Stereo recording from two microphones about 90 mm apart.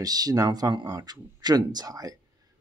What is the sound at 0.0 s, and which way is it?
Speech, 45° right (ahead or behind).